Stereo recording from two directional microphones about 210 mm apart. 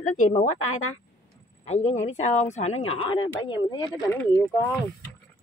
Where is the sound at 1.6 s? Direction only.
30° left (ahead or behind); by 4.3 s 15° left (ahead or behind).